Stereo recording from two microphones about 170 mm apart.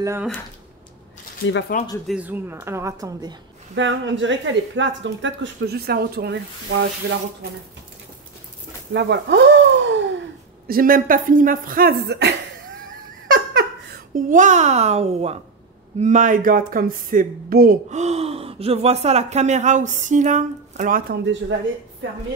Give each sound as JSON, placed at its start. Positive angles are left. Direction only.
{"t": 1.7, "sound": "speech", "side_deg": 55}
{"t": 2.0, "sound": "speech", "side_deg": -10}
{"t": 3.7, "sound": "speech", "side_deg": -90}
{"t": 8.9, "sound": "a sound", "side_deg": -90}
{"t": 10.7, "sound": "speech", "side_deg": -55}
{"t": 13.3, "sound": "a sound", "side_deg": -70}
{"t": 16.0, "sound": "speech", "side_deg": -45}
{"t": 17.8, "sound": "speech", "side_deg": -40}
{"t": 21.1, "sound": "speech", "side_deg": -90}